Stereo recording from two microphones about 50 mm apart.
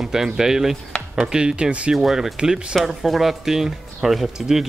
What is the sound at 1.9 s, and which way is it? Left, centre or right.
Speech, centre.